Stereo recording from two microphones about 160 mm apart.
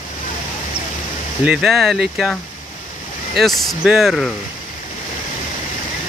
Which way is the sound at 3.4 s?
Centre (ahead or behind).